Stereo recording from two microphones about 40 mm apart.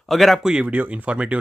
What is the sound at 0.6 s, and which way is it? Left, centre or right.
Speech, right.